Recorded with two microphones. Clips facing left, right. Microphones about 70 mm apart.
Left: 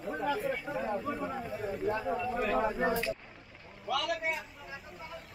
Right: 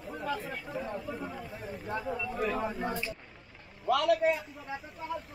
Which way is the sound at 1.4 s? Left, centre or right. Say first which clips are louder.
Left 6 dB; centre.